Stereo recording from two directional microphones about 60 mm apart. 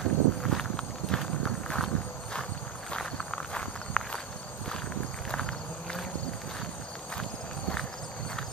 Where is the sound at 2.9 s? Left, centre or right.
Centre.